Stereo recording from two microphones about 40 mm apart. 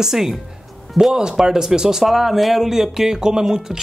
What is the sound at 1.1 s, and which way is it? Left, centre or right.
Speech, centre.